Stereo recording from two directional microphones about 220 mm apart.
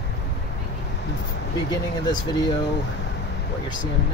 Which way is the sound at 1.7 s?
20° left (ahead or behind).